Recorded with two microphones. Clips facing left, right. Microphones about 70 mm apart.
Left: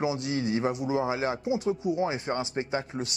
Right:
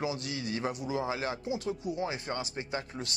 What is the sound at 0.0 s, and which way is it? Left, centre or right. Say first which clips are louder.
Speech: left 6 dB; left.